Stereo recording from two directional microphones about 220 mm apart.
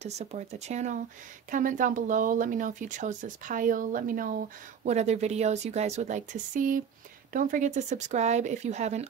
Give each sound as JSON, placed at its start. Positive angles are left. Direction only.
{"t": 0.0, "sound": "speech", "side_deg": -30}